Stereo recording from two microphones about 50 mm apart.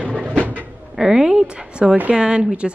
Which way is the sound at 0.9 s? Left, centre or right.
Centre.